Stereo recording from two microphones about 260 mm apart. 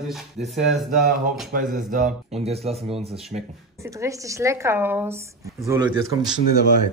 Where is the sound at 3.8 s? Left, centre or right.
Centre.